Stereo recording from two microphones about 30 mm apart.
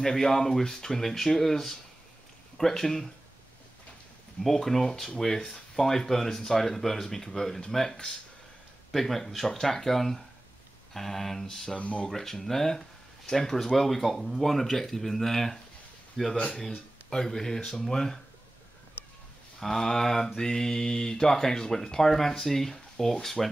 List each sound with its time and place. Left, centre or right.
0.0 s speech: centre
4.4 s speech: centre
11.8 s speech: left
12.1 s speech: centre
19.6 s speech: centre